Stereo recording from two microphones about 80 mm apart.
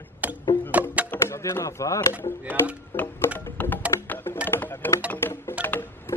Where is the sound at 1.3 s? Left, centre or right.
Left.